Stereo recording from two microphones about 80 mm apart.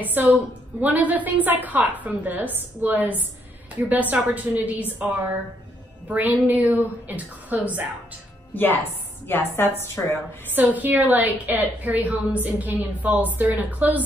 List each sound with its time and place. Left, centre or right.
0.0 s a woman's voice: right
8.5 s a woman's voice: left
10.5 s a woman's voice: right